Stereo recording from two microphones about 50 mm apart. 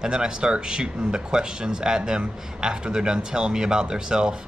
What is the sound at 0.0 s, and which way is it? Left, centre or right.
Speech, centre.